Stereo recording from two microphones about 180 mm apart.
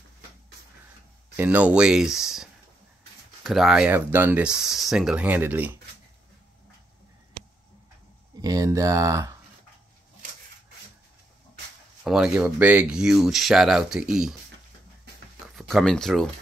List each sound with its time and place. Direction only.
1.3 s speech: 10° right (ahead or behind)
8.4 s speech: 20° right (ahead or behind)
12.0 s speech: 5° right (ahead or behind)
15.4 s speech: centre (ahead or behind)